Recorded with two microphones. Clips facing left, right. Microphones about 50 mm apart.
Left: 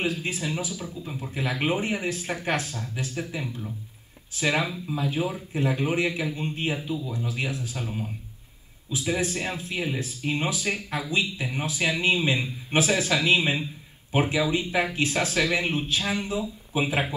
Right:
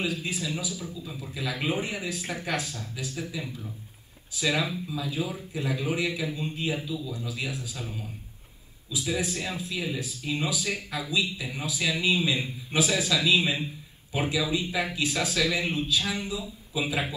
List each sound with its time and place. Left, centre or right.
0.0 s speech: left